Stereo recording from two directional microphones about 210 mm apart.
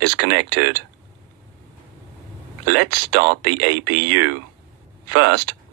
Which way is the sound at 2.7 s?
55° right (ahead or behind).